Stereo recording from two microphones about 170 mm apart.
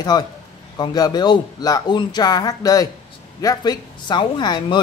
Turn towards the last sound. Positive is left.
turn(degrees=25)  # may be behind; listen again after turning